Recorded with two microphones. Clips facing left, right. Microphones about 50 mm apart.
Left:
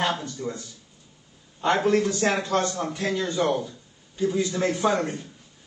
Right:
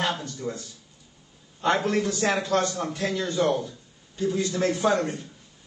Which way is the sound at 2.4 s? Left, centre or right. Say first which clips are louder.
Even; left.